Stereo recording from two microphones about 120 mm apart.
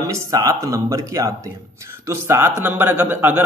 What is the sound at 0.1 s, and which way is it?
A man's voice, 30° right (ahead or behind).